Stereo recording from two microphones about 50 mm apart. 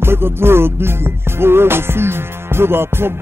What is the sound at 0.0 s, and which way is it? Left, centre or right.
Music, right.